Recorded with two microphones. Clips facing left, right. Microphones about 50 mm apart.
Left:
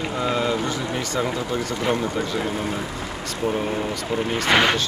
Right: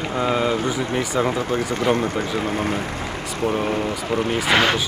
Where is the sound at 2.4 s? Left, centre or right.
Right.